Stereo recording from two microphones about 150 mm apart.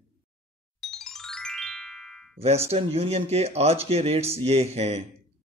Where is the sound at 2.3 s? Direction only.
40° right (ahead or behind).